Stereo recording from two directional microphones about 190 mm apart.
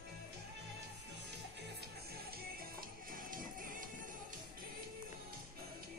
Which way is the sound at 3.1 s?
45° right (ahead or behind).